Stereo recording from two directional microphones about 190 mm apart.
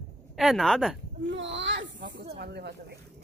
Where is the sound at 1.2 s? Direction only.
70° right (ahead or behind).